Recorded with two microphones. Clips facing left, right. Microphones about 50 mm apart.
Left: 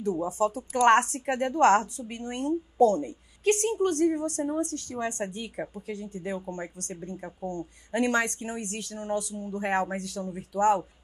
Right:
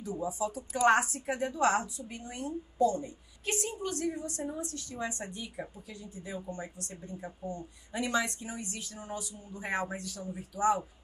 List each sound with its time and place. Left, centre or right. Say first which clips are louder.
0.3 s a woman's voice: left 7 dB; left
7.4 s speech: left 8 dB; left
8.0 s a woman's voice: left 5 dB; left